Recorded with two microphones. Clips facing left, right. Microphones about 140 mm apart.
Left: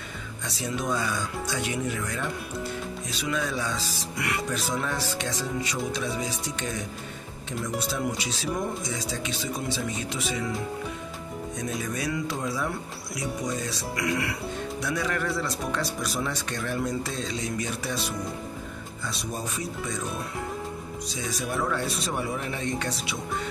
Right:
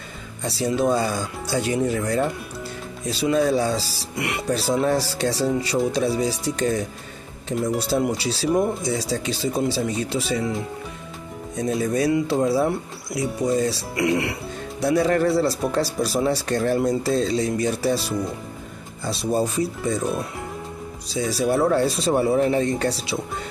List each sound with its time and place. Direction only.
0.4 s speech: 30° right (ahead or behind)
8.2 s speech: 35° right (ahead or behind)
11.5 s speech: 35° right (ahead or behind)
21.1 s speech: 35° right (ahead or behind)